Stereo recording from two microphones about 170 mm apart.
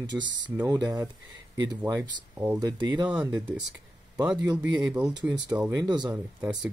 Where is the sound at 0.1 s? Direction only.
5° right (ahead or behind).